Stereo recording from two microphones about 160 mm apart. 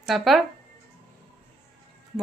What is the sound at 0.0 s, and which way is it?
Speech, centre (ahead or behind).